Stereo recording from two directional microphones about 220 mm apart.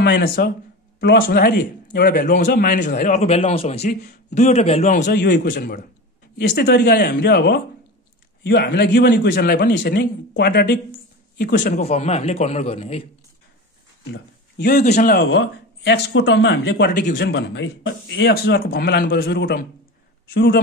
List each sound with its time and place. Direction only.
0.0 s a man's voice: 45° left (ahead or behind)
5.1 s a man's voice: 45° left (ahead or behind); by 13.0 s 25° left (ahead or behind)
14.1 s speech: 45° left (ahead or behind)